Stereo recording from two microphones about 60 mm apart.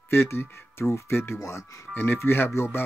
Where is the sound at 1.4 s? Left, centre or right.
Left.